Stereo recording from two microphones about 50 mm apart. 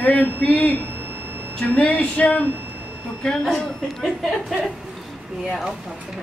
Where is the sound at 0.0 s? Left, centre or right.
Left.